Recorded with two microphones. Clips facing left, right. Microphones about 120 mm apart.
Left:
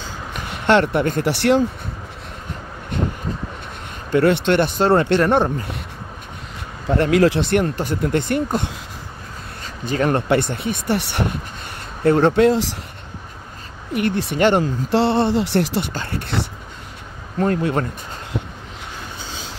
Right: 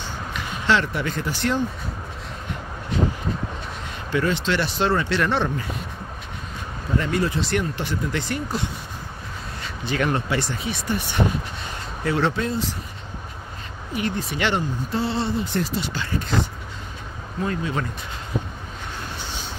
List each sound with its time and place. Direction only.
0.3 s speech: 60° left (ahead or behind)
2.9 s vehicle: 55° left (ahead or behind)
4.2 s speech: 60° left (ahead or behind); by 5.5 s 45° left (ahead or behind)
7.0 s speech: 85° left
7.4 s speech: 55° left (ahead or behind)
9.6 s a sound: 40° left (ahead or behind)
10.2 s speech: 60° left (ahead or behind)
12.0 s speech: 50° left (ahead or behind)
12.4 s speech: 90° left
13.9 s speech: 65° left (ahead or behind)
14.6 s speech: 80° left
17.4 s speech: 55° left (ahead or behind)